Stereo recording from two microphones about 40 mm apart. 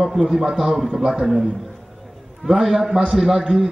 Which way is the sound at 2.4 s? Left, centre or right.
Centre.